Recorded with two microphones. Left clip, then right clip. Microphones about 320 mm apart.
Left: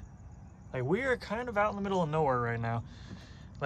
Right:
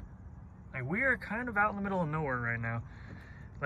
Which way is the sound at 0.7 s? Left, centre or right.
Centre.